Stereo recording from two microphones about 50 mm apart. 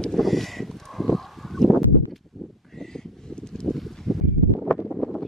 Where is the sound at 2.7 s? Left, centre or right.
Centre.